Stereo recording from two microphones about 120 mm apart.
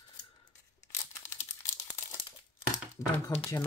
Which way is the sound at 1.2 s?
85° left.